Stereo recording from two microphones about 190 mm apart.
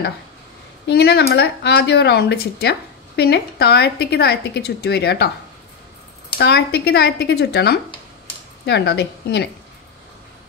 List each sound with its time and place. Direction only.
0.8 s speech: 60° left (ahead or behind)
6.3 s speech: 60° left (ahead or behind)